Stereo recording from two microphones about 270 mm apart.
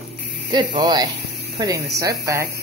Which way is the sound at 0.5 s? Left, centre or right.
Centre.